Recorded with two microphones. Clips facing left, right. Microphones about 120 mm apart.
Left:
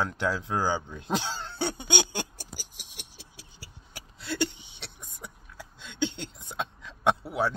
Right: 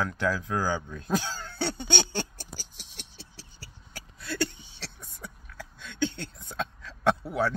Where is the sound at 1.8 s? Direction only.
15° left (ahead or behind).